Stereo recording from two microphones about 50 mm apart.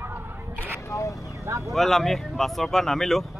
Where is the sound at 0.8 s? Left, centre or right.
Left.